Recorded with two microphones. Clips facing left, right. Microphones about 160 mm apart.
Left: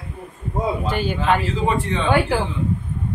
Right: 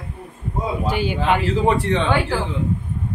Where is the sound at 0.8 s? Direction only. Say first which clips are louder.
Right 1 dB; 10° right (ahead or behind).